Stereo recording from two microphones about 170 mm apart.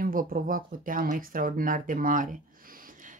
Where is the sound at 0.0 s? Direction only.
55° right (ahead or behind).